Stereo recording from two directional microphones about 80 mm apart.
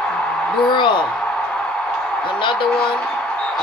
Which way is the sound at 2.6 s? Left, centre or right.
Centre.